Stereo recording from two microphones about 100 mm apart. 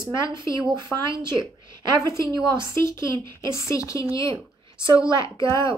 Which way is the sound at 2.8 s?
30° left (ahead or behind).